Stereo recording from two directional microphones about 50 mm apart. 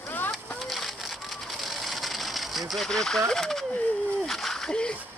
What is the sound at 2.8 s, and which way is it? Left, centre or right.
Speech, centre.